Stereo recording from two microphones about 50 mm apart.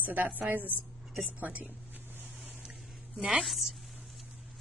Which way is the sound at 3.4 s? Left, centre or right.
Centre.